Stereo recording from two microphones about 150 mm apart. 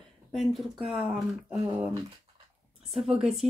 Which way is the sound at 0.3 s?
Centre (ahead or behind).